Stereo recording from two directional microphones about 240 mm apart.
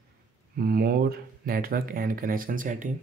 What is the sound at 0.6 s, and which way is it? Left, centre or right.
Speech, right.